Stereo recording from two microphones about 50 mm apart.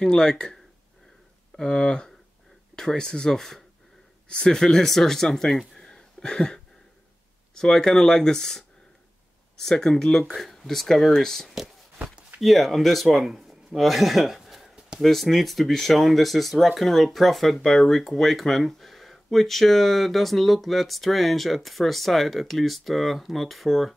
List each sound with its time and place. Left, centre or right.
0.0 s speech: centre
1.6 s speech: centre